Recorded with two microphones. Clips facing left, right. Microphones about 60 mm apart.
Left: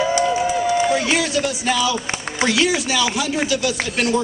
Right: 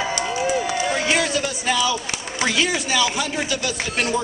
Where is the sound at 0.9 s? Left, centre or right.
Centre.